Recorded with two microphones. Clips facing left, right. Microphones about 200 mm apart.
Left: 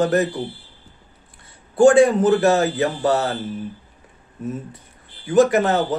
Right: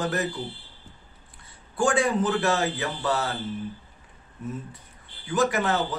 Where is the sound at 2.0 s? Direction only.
45° left (ahead or behind).